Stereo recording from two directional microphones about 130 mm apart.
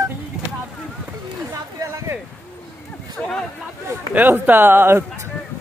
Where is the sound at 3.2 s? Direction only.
10° left (ahead or behind).